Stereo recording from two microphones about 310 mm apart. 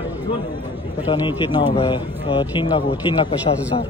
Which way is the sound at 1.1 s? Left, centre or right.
Centre.